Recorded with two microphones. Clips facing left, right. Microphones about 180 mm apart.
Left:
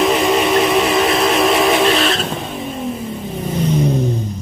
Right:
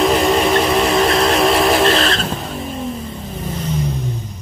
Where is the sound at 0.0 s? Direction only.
Centre (ahead or behind).